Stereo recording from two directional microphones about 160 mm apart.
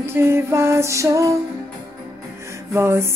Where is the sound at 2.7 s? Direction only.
15° right (ahead or behind).